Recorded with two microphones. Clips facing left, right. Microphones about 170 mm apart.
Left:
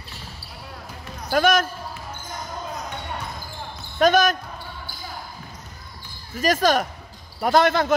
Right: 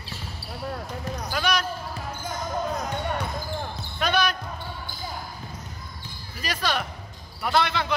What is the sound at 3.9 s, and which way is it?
Speech, 45° left (ahead or behind).